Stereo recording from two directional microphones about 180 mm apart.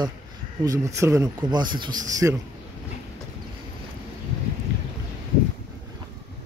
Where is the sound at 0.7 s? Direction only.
15° right (ahead or behind).